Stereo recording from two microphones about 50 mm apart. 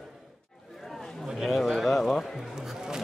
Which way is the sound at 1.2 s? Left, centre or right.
Centre.